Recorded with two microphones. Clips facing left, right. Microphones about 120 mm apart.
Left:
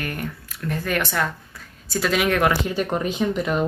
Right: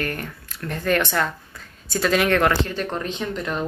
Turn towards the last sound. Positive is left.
turn(degrees=5)  # may be behind; listen again after turning